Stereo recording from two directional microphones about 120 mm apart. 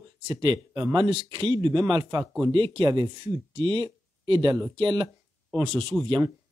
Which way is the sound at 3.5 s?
45° right (ahead or behind).